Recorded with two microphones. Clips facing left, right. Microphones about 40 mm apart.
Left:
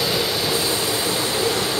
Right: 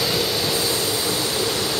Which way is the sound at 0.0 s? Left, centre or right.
Centre.